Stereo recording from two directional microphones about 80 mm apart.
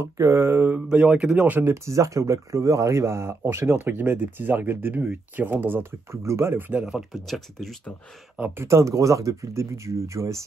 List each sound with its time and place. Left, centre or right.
0.0 s speech: right
0.7 s speech: centre
1.6 s speech: right
6.7 s speech: centre
7.2 s speech: centre
8.6 s speech: right